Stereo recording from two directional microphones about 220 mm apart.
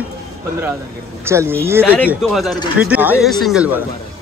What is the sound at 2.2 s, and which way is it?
A man's voice, centre (ahead or behind).